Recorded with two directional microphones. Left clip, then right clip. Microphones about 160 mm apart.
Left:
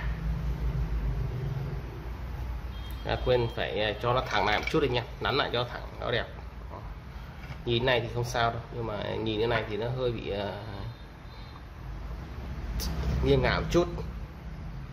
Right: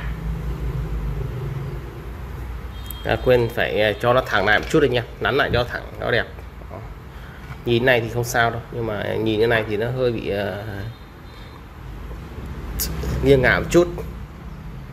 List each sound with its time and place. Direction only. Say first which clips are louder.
3.1 s speech: right 10 dB; 30° right (ahead or behind)
7.6 s speech: right 9 dB; 25° right (ahead or behind)
12.7 s speech: right 8 dB; 25° right (ahead or behind)